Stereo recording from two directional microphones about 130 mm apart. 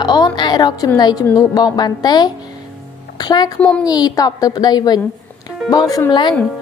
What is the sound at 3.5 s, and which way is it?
Speech, 10° left (ahead or behind).